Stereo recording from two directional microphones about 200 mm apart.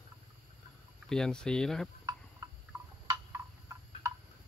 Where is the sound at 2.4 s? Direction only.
15° right (ahead or behind).